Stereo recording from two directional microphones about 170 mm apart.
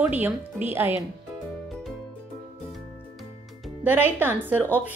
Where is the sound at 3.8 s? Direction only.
10° right (ahead or behind).